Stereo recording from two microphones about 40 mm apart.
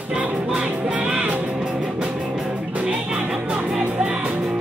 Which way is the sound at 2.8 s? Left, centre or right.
Right.